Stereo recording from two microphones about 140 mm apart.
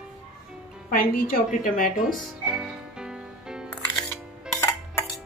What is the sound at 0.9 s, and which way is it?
A woman's voice, 90° left.